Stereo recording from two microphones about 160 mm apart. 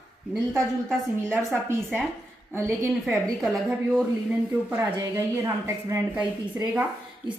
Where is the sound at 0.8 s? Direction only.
10° right (ahead or behind).